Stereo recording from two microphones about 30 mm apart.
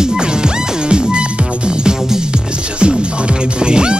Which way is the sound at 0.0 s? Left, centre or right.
Right.